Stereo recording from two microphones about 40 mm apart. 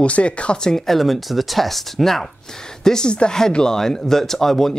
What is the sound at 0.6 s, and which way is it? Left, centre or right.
Speech, centre.